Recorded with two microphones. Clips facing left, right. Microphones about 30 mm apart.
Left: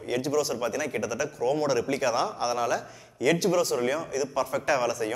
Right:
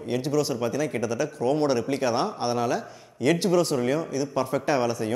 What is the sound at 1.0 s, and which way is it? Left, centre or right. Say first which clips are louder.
Speech: right 2 dB; right.